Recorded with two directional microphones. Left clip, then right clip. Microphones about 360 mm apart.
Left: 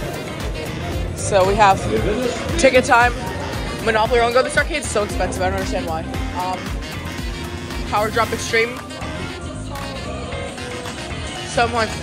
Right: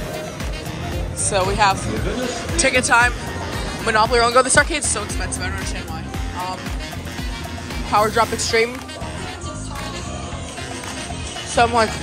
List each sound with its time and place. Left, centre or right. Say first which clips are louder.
1.3 s speech: left 4 dB; centre
7.9 s speech: right 2 dB; centre
11.5 s speech: right 3 dB; centre